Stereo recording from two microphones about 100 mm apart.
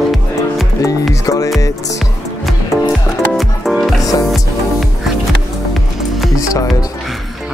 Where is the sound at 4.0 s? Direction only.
35° left (ahead or behind).